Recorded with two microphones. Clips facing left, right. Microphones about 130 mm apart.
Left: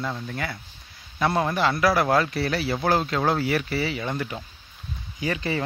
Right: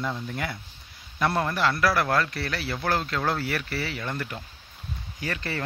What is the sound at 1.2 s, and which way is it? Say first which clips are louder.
A man's voice: left 2 dB; 10° left (ahead or behind).